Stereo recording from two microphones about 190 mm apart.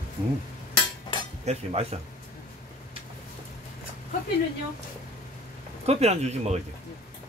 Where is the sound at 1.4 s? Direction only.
35° right (ahead or behind).